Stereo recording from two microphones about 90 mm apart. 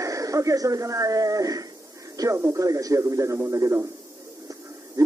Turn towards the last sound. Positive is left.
turn(degrees=-30)  # may be behind; listen again after turning